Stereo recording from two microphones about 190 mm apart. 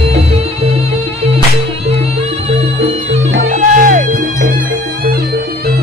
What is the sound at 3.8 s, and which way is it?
Music, 45° right (ahead or behind).